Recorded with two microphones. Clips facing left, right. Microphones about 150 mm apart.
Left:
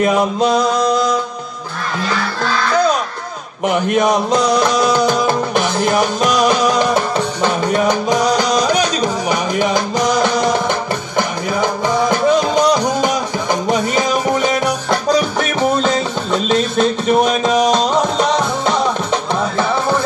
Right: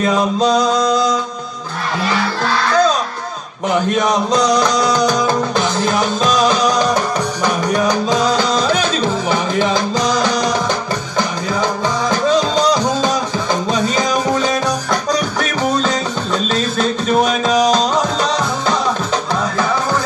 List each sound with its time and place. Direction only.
0.0 s speech: 20° left (ahead or behind)
0.6 s music: 20° right (ahead or behind)
3.6 s speech: 20° left (ahead or behind)
4.6 s music: 25° left (ahead or behind)